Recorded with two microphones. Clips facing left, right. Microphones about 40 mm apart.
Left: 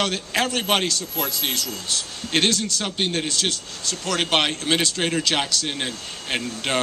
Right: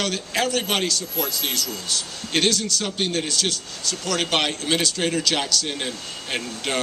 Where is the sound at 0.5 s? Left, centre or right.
Left.